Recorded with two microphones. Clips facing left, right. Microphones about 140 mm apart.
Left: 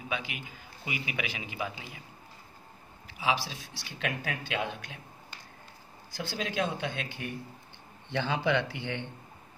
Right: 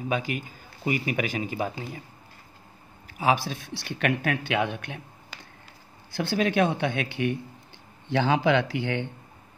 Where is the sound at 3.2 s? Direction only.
50° right (ahead or behind); by 7.4 s 75° right (ahead or behind).